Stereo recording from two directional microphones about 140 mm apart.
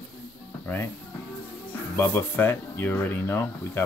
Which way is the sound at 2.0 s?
15° left (ahead or behind).